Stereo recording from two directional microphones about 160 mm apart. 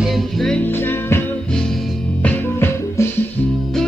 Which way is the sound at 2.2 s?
15° left (ahead or behind).